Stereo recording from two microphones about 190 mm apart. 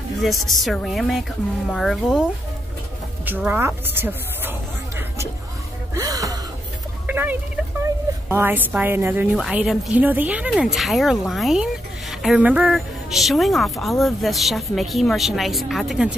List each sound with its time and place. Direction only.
0.2 s a woman's voice: centre (ahead or behind)
3.3 s a sound: 10° right (ahead or behind)
5.9 s gasp: 20° right (ahead or behind)
7.1 s music: 10° right (ahead or behind)
8.3 s a woman's voice: 10° right (ahead or behind)